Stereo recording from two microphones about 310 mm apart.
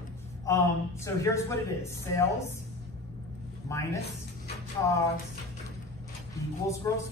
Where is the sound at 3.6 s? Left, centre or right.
Centre.